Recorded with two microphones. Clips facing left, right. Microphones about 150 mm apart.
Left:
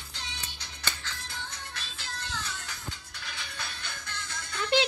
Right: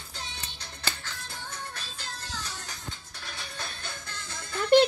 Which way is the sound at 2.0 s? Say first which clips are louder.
Left 3 dB; 40° right (ahead or behind).